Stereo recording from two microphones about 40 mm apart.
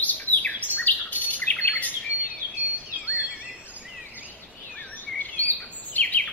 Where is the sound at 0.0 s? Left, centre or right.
Left.